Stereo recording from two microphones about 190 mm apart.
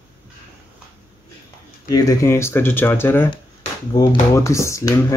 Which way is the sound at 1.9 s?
20° left (ahead or behind).